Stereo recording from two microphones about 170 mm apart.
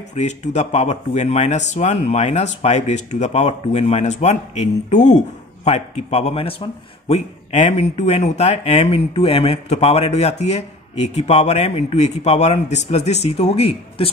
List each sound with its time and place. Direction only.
0.1 s speech: 40° left (ahead or behind)